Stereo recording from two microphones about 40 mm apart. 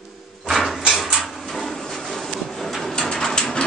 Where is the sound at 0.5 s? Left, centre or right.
Centre.